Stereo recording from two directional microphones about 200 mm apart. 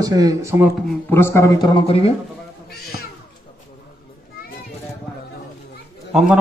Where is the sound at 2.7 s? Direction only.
50° left (ahead or behind).